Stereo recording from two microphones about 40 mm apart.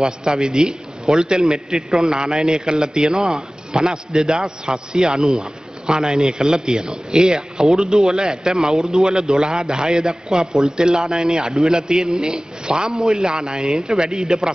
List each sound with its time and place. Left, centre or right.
0.0 s a man's voice: centre
10.4 s speech: centre
10.8 s a man's voice: centre